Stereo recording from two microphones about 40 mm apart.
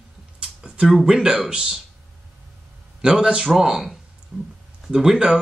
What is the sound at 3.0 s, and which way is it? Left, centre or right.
Speech, centre.